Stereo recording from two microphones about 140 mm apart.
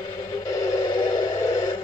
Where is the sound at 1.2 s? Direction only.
30° left (ahead or behind).